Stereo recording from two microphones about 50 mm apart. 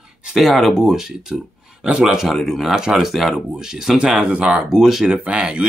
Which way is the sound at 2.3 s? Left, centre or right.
Centre.